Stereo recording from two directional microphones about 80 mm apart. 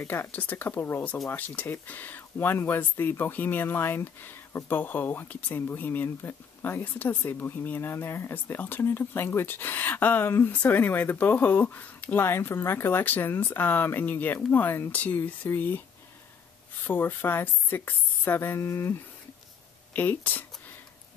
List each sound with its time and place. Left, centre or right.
0.0 s speech: left
16.8 s speech: left
19.9 s speech: left